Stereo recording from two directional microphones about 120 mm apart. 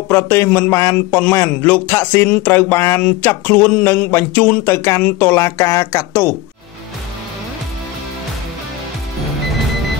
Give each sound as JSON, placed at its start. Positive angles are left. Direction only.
{"t": 0.1, "sound": "speech", "side_deg": 20}